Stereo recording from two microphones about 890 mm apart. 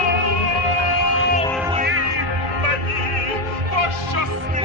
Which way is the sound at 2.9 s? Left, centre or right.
Right.